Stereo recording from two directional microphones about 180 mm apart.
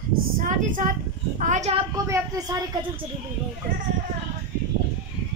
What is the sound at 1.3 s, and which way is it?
Speech, 40° right (ahead or behind).